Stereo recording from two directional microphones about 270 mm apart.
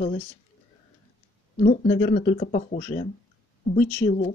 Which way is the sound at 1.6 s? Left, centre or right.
Left.